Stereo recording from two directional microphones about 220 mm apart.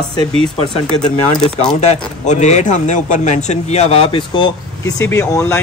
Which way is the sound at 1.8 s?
30° left (ahead or behind).